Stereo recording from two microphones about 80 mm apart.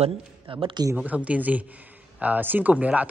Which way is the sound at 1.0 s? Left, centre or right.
Centre.